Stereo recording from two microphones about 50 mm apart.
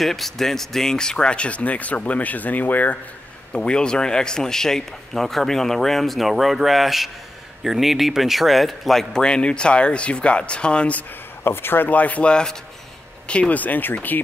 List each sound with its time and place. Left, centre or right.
0.0 s speech: centre; by 3.0 s left
3.5 s a man's voice: centre
9.2 s speech: centre
11.4 s speech: left
11.9 s speech: left